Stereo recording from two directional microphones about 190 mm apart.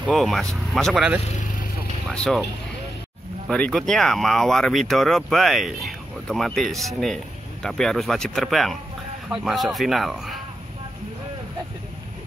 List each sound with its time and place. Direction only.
0.0 s speech: centre (ahead or behind)
1.2 s speech: 35° left (ahead or behind)
2.0 s speech: 5° left (ahead or behind)
3.4 s speech: 5° left (ahead or behind)